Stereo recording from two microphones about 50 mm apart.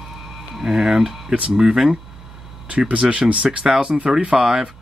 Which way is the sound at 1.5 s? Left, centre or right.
Centre.